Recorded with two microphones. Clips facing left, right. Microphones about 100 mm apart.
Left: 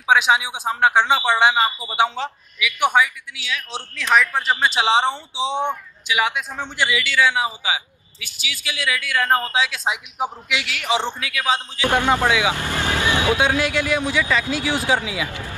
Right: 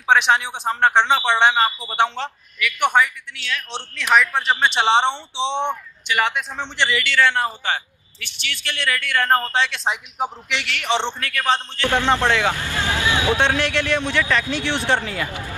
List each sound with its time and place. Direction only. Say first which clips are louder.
0.0 s a man's voice: even; 10° left (ahead or behind)
13.1 s speech: left 1 dB; 20° right (ahead or behind)
13.4 s a man's voice: even; 10° left (ahead or behind)